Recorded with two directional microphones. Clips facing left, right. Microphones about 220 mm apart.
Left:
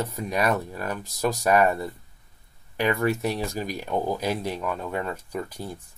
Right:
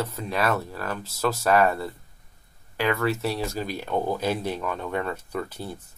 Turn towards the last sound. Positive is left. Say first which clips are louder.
# right 1 dB
turn(degrees=10)  # may be behind; listen again after turning